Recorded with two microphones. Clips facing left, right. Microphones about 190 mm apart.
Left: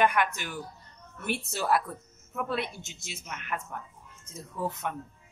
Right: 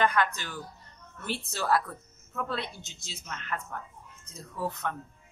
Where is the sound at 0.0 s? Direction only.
15° left (ahead or behind).